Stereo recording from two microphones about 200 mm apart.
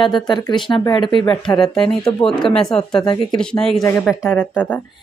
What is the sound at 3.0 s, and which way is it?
Speech, 20° left (ahead or behind).